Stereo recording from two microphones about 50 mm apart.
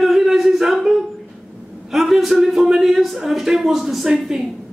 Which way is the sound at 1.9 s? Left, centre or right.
Centre.